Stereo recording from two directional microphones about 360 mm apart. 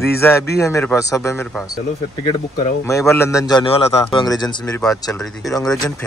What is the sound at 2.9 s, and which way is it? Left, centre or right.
A man's voice, centre.